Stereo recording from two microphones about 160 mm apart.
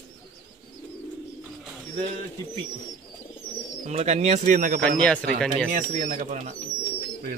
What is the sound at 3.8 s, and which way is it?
Speech, 45° right (ahead or behind).